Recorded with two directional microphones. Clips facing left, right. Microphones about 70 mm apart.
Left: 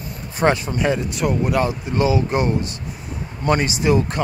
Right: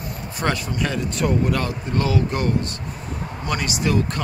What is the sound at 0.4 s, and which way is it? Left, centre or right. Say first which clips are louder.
Speech: left 5 dB; left.